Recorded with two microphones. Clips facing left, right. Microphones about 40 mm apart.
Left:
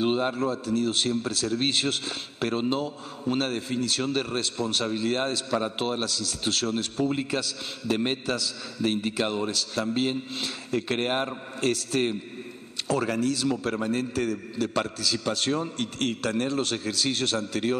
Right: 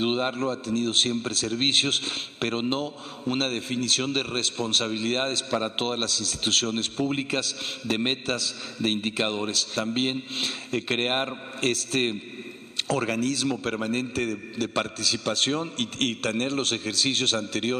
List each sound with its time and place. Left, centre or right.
0.0 s a man's voice: right
0.4 s a man's voice: right